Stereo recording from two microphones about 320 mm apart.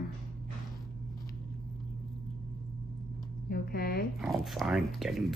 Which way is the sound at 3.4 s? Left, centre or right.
Left.